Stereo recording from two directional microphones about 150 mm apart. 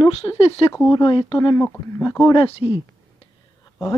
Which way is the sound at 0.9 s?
30° left (ahead or behind).